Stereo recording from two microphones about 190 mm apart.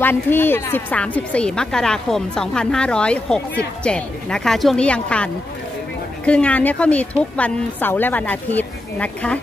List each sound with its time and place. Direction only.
0.0 s a woman's voice: 10° left (ahead or behind)